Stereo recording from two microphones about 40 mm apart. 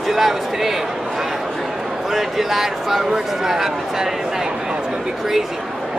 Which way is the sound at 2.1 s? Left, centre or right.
Centre.